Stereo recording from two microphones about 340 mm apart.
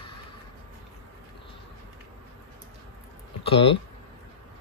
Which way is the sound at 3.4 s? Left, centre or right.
Centre.